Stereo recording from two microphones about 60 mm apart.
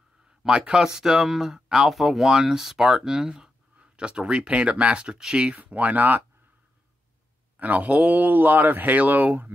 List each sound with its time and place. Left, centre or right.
0.4 s speech: centre
7.5 s speech: right